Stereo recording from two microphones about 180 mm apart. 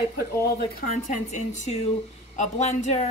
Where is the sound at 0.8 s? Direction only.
40° left (ahead or behind).